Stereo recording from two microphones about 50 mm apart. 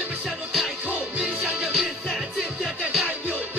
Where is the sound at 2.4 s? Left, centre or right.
Centre.